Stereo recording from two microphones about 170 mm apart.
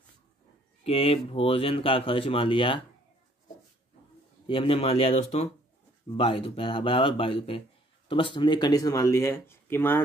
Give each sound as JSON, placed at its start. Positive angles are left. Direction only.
{"t": 0.8, "sound": "speech", "side_deg": 35}
{"t": 4.5, "sound": "speech", "side_deg": 35}